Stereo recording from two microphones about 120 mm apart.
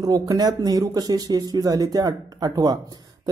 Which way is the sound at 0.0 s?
35° right (ahead or behind).